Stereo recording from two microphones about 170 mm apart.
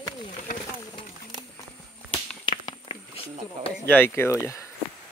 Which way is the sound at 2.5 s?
25° left (ahead or behind).